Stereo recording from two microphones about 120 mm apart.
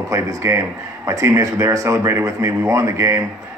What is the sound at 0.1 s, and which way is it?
A man's voice, 25° right (ahead or behind).